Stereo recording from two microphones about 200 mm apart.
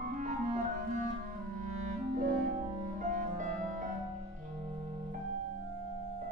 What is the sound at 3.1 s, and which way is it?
Music, 40° right (ahead or behind).